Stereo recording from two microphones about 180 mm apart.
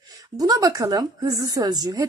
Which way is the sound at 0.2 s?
20° right (ahead or behind).